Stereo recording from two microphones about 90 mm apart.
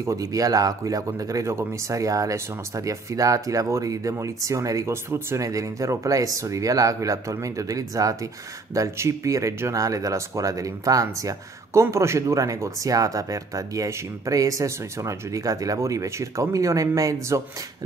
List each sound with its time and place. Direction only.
0.0 s speech: 40° right (ahead or behind)